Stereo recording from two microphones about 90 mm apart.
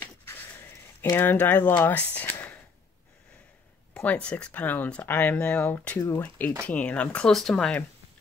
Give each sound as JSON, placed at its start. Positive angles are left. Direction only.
{"t": 0.0, "sound": "a sound", "side_deg": 25}
{"t": 1.1, "sound": "speech", "side_deg": 20}
{"t": 4.0, "sound": "speech", "side_deg": 15}
{"t": 5.9, "sound": "speech", "side_deg": 30}
{"t": 7.3, "sound": "speech", "side_deg": 5}